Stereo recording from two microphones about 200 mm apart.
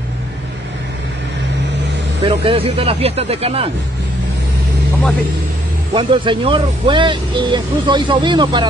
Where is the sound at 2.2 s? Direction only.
30° right (ahead or behind).